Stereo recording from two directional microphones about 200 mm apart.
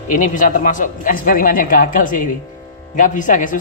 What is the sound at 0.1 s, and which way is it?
Speech, 40° left (ahead or behind).